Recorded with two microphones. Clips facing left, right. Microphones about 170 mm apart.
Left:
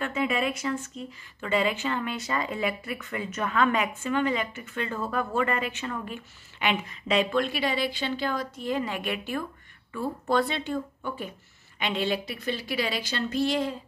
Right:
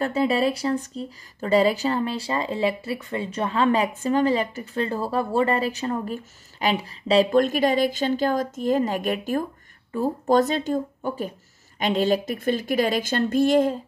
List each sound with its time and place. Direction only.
0.0 s a woman's voice: 35° right (ahead or behind)